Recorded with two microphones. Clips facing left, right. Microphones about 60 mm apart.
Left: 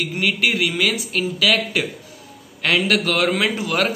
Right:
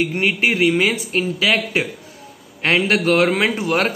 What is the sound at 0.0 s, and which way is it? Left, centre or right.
A man's voice, right.